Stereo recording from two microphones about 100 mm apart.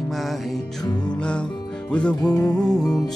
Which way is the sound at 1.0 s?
10° left (ahead or behind).